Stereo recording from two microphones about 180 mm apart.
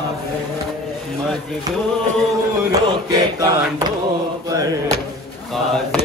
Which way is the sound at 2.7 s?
20° right (ahead or behind).